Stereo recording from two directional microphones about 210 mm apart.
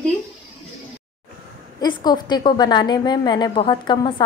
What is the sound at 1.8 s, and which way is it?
A woman's voice, 20° left (ahead or behind).